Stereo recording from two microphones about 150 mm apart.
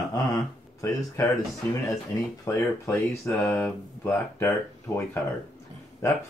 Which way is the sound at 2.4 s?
15° left (ahead or behind).